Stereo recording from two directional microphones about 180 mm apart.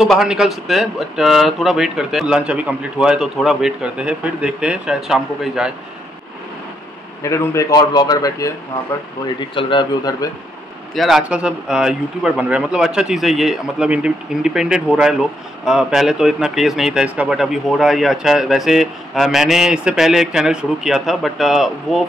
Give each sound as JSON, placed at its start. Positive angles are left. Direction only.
{"t": 0.0, "sound": "speech", "side_deg": 0}
{"t": 7.2, "sound": "a man's voice", "side_deg": 15}
{"t": 9.6, "sound": "a man's voice", "side_deg": 25}
{"t": 11.0, "sound": "speech", "side_deg": 0}